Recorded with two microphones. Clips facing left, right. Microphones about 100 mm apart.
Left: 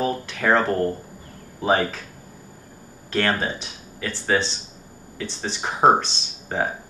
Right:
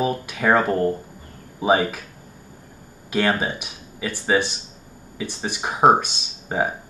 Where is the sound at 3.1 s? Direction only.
10° right (ahead or behind).